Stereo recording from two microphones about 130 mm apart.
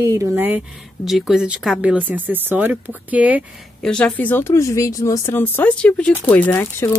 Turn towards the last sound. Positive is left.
turn(degrees=15)  # may be behind; listen again after turning